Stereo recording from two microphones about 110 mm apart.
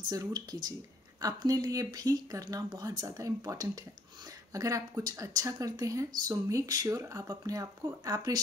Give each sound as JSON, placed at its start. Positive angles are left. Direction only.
{"t": 0.1, "sound": "speech", "side_deg": -35}